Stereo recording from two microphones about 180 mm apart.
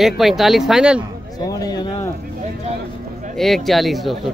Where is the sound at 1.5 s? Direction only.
20° left (ahead or behind).